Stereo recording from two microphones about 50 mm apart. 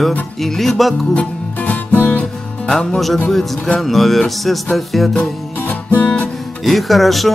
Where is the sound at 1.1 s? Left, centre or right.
Left.